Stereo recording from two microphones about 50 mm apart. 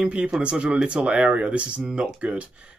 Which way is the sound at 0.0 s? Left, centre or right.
Right.